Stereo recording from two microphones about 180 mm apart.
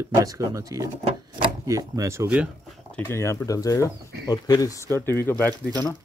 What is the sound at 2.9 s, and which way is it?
Speech, 15° left (ahead or behind).